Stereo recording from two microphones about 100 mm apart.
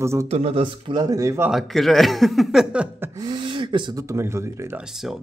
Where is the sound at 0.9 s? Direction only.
40° right (ahead or behind).